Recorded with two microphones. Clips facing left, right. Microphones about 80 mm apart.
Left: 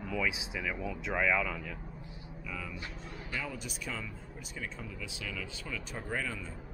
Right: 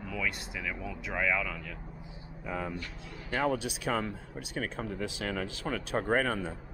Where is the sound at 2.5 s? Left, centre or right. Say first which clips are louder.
Right 7 dB; right.